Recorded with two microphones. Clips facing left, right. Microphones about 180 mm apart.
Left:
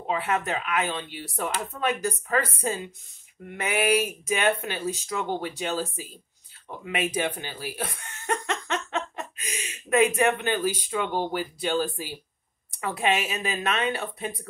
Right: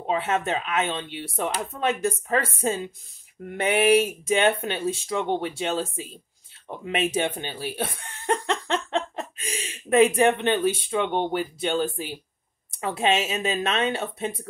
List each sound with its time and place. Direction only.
0.0 s speech: 25° right (ahead or behind)